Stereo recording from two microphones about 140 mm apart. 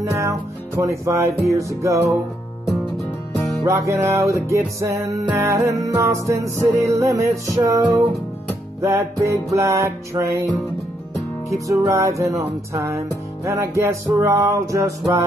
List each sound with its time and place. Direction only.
0.0 s music: 20° right (ahead or behind)
3.6 s music: 20° right (ahead or behind)
11.6 s music: 25° right (ahead or behind)